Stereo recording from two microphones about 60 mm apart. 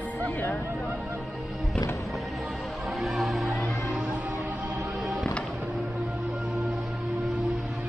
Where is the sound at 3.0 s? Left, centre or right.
Centre.